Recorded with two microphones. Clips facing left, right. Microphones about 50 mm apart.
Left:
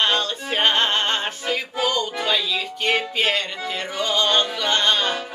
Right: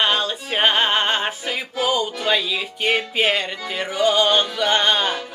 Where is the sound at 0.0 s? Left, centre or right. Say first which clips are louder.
Right 1 dB; centre.